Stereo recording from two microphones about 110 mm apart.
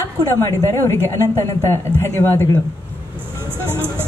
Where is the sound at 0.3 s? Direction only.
25° left (ahead or behind).